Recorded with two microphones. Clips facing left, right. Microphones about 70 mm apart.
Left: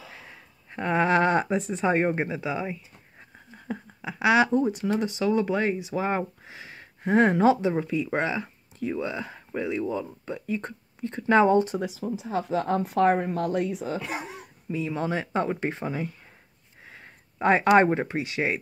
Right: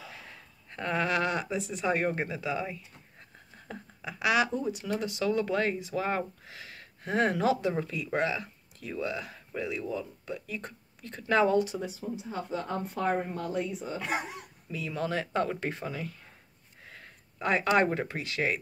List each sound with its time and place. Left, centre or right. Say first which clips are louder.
0.7 s speech: left 6 dB; left
4.6 s speech: left 7 dB; left
11.8 s speech: left 5 dB; left
14.7 s speech: left 5 dB; left
16.8 s a sound: left 2 dB; centre
17.4 s speech: left 7 dB; left